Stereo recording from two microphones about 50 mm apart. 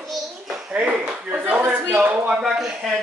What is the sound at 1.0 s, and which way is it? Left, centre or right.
Speech, right.